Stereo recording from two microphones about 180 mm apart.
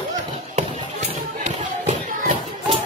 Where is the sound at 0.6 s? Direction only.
40° right (ahead or behind).